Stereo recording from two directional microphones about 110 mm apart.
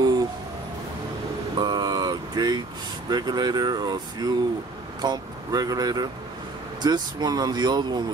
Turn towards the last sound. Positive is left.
turn(degrees=-40)  # may be behind; listen again after turning